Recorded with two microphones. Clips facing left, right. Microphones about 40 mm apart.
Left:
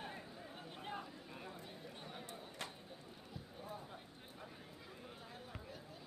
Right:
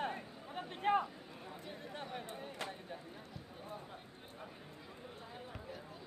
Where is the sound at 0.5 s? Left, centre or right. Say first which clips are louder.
Right 15 dB; right.